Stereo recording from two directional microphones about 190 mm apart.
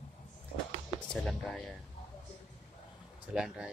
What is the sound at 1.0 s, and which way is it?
Speech, centre (ahead or behind).